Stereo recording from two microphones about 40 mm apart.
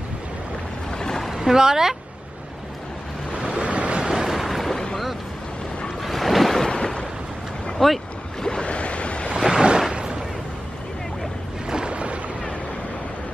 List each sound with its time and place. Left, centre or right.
0.9 s boat: centre
1.3 s speech: centre
3.3 s waves: right
4.0 s vehicle: centre
4.3 s boat: centre
6.0 s waves: centre
6.7 s a sound: centre
7.8 s speech: centre
8.4 s waves: left
9.5 s a sound: right
11.7 s boat: right